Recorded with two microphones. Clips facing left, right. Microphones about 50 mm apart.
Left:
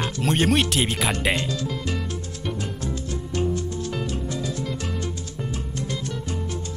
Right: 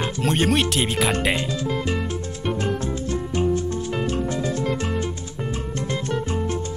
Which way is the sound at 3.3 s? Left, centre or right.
Right.